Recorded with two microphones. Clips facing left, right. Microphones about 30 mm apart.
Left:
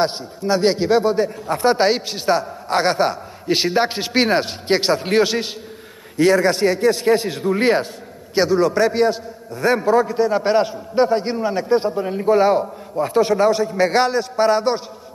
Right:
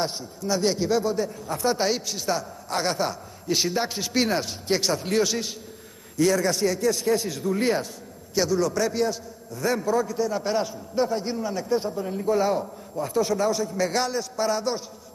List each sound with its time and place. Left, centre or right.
0.0 s a man's voice: left